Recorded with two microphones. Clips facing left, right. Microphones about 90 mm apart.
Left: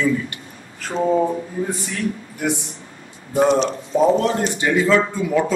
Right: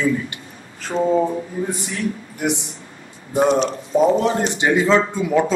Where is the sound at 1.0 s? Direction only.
10° left (ahead or behind).